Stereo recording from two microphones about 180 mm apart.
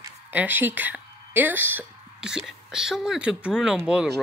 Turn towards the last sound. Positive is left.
turn(degrees=-5)  # may be behind; listen again after turning